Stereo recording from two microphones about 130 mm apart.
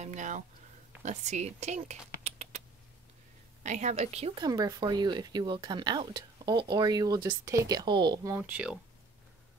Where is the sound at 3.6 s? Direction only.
65° right (ahead or behind).